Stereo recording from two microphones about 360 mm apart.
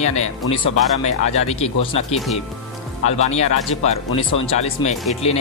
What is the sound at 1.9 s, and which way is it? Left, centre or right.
Speech, centre.